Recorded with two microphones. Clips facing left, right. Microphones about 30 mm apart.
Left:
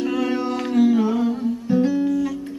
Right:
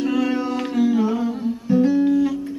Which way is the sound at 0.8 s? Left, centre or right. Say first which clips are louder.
Even; centre.